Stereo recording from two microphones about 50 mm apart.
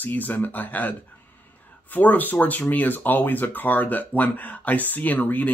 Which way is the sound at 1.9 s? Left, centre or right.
Left.